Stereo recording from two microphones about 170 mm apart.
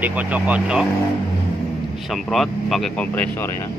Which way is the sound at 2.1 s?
Centre (ahead or behind).